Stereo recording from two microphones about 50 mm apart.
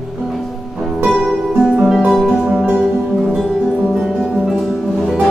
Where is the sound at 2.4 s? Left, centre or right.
Right.